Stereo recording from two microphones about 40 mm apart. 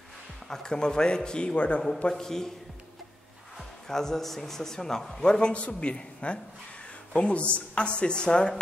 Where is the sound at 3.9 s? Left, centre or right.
Centre.